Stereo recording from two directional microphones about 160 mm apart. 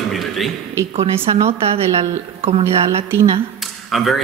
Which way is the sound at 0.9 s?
35° right (ahead or behind).